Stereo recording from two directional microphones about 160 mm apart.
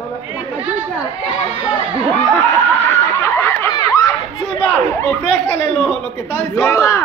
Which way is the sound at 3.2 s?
15° left (ahead or behind).